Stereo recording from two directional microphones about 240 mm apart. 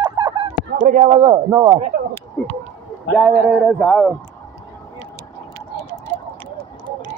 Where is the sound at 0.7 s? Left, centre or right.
Right.